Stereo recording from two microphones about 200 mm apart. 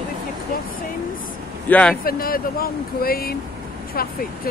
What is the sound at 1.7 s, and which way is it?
Speech, 5° left (ahead or behind).